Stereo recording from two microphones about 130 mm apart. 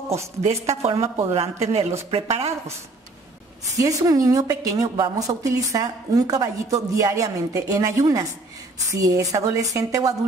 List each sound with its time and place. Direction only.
0.8 s speech: 50° right (ahead or behind)
3.7 s a woman's voice: 25° right (ahead or behind)